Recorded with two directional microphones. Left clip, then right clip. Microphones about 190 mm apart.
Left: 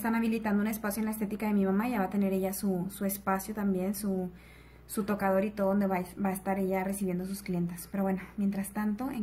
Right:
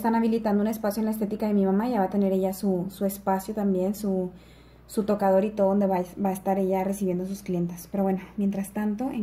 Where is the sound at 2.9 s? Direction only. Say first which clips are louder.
Right 5 dB; 10° left (ahead or behind).